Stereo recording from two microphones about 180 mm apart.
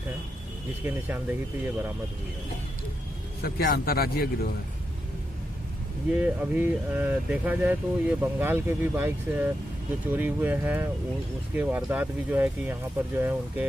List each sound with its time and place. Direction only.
0.8 s speech: 10° right (ahead or behind)
3.4 s a man's voice: 60° left (ahead or behind)
6.1 s speech: 10° right (ahead or behind)